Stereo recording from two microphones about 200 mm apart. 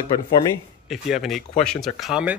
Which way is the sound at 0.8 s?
Centre (ahead or behind).